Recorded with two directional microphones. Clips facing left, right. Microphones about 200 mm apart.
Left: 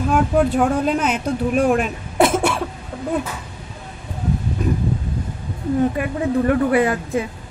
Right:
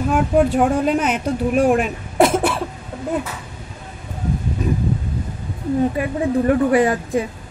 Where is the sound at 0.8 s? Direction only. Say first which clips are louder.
Right 1 dB; centre (ahead or behind).